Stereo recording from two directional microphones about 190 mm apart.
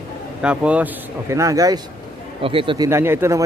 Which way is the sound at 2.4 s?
30° right (ahead or behind).